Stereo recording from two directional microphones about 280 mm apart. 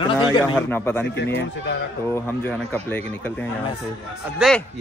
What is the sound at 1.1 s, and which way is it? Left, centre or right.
Speech, left.